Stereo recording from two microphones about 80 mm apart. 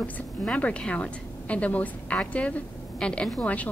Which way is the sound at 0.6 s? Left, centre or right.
Centre.